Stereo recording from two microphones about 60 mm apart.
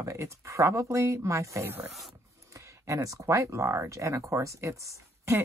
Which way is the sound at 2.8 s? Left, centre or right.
Right.